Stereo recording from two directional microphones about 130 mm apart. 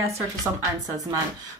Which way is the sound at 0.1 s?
25° right (ahead or behind).